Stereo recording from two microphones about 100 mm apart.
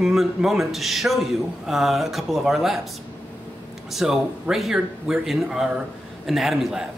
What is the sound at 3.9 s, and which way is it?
A man's voice, 5° right (ahead or behind).